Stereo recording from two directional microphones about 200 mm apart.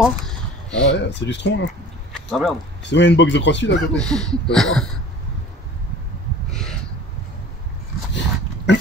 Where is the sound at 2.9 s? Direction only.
60° left (ahead or behind).